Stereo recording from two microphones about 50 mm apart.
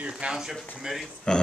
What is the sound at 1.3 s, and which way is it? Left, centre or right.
Speech, centre.